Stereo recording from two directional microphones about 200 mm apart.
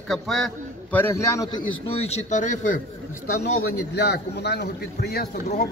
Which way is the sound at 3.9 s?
55° left (ahead or behind).